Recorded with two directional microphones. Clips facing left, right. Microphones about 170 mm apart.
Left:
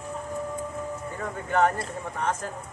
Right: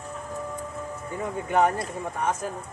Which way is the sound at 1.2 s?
15° right (ahead or behind).